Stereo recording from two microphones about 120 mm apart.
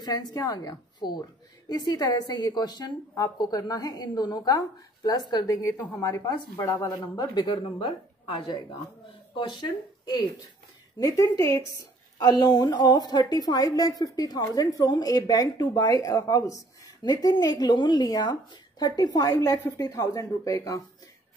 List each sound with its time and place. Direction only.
0.0 s a woman's voice: 35° left (ahead or behind)
6.7 s a woman's voice: 20° left (ahead or behind)
7.2 s a woman's voice: 35° left (ahead or behind)